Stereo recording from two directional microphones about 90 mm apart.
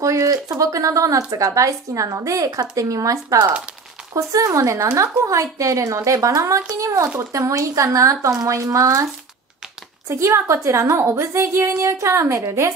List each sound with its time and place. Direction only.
0.0 s a woman's voice: 40° right (ahead or behind)
10.0 s a woman's voice: 30° right (ahead or behind)